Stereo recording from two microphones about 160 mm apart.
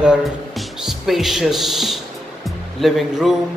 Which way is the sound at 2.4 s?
Centre (ahead or behind).